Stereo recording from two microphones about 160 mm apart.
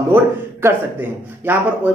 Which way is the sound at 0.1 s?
15° right (ahead or behind).